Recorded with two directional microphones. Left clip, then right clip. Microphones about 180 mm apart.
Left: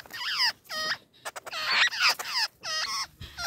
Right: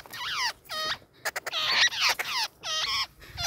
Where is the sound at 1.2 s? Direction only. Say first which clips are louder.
Right 6 dB; 30° right (ahead or behind).